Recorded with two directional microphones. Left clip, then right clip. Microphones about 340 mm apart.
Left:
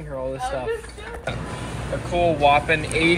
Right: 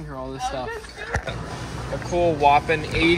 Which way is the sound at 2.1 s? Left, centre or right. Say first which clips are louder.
Even; centre.